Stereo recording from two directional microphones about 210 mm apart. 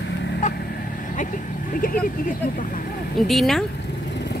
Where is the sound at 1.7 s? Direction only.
40° left (ahead or behind).